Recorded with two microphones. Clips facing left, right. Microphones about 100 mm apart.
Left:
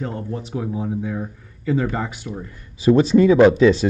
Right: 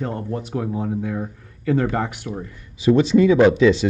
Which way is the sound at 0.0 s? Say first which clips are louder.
Right 1 dB; 60° right (ahead or behind).